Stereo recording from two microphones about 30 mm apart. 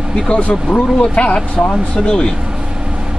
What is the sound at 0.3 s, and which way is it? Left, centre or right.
Speech, left.